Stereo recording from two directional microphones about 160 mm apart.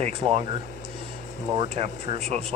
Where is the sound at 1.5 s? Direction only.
35° right (ahead or behind).